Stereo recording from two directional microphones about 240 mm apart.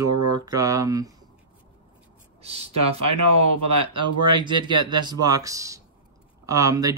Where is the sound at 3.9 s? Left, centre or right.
Centre.